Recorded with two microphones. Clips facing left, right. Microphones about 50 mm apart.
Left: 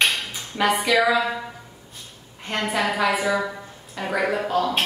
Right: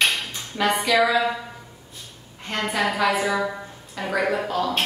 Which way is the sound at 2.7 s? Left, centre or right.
Centre.